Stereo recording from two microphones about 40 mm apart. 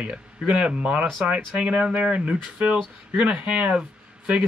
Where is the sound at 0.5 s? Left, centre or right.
Right.